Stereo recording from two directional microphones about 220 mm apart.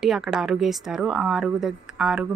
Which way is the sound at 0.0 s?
Centre (ahead or behind).